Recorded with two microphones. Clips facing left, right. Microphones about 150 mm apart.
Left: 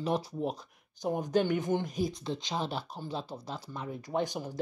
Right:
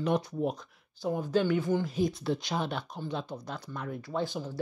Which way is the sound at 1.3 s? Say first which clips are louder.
Right 1 dB; 45° left (ahead or behind).